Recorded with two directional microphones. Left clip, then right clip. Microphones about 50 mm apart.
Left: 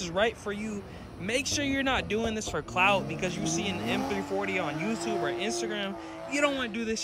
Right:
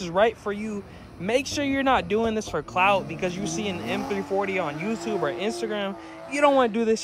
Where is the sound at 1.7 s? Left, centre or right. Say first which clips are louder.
Right 6 dB; centre.